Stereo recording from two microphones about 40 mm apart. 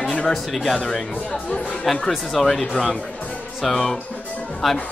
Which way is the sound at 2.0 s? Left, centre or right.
Centre.